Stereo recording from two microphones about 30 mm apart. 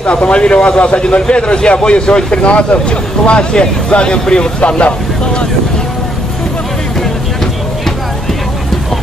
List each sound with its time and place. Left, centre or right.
0.1 s speech: left
4.6 s speech: left